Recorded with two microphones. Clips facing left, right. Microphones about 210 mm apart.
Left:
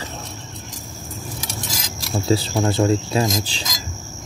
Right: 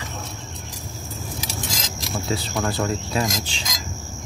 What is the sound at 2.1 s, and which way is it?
Speech, 30° left (ahead or behind).